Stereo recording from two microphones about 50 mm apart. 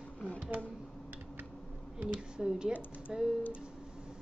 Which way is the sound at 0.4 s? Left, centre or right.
Right.